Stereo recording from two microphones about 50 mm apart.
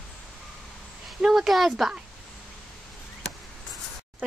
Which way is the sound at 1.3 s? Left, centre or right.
Centre.